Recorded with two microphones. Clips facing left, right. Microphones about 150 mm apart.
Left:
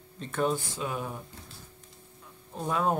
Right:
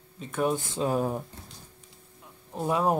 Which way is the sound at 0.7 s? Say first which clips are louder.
Right 7 dB; 35° right (ahead or behind).